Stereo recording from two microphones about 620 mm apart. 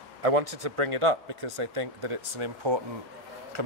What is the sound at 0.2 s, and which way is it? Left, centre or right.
Speech, right.